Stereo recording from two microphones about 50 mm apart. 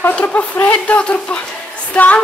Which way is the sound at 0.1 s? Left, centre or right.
Left.